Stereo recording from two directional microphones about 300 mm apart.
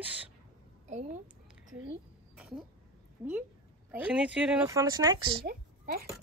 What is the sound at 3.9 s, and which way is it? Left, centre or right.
Speech, centre.